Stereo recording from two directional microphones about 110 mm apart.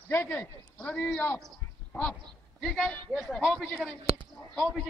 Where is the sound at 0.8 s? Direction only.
10° left (ahead or behind).